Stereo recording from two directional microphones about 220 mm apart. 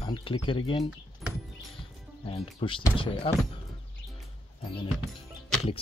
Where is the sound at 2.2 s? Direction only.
25° left (ahead or behind).